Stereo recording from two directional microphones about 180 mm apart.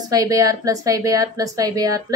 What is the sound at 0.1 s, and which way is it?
A woman's voice, 20° right (ahead or behind).